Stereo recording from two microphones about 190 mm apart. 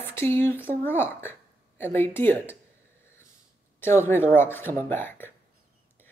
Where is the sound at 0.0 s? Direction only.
10° left (ahead or behind).